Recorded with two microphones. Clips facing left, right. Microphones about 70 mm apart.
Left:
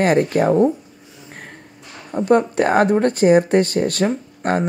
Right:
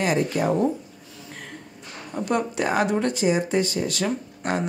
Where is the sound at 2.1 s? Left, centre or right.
Left.